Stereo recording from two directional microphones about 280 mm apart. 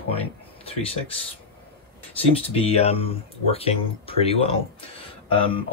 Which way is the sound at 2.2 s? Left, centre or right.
Left.